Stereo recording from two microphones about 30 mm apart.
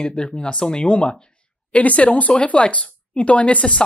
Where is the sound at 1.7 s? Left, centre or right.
Left.